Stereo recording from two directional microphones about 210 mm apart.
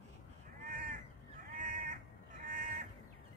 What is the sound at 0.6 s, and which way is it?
Crow, 40° right (ahead or behind).